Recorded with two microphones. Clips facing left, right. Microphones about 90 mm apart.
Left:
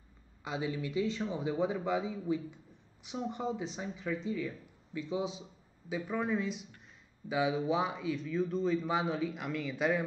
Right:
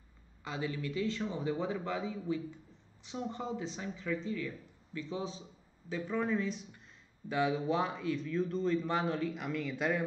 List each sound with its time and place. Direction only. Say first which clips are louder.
0.4 s a man's voice: left 2 dB; 15° left (ahead or behind)
2.5 s a sound: right 2 dB; 10° left (ahead or behind)
3.2 s a man's voice: left 2 dB; centre (ahead or behind)
4.9 s a man's voice: left 3 dB; 15° left (ahead or behind)